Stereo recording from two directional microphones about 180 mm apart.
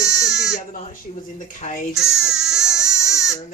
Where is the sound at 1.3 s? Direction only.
45° left (ahead or behind).